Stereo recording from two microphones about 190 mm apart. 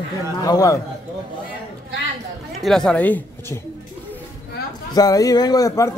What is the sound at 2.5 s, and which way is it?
A woman's voice, centre (ahead or behind).